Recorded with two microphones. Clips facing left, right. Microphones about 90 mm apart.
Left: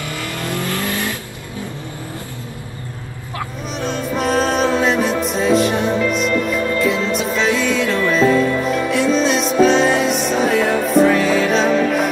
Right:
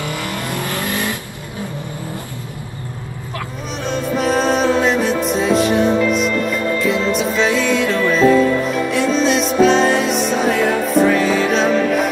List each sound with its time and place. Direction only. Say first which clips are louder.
0.0 s vehicle: right 2 dB; 20° right (ahead or behind)
3.8 s music: right 2 dB; centre (ahead or behind)